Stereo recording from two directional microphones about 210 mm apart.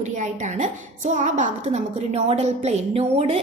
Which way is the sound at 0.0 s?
35° right (ahead or behind).